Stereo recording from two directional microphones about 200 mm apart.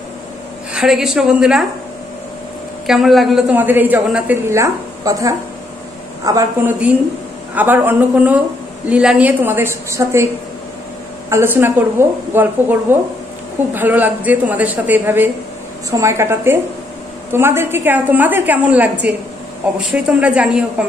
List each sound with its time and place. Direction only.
0.7 s a woman's voice: centre (ahead or behind)
2.9 s a woman's voice: centre (ahead or behind)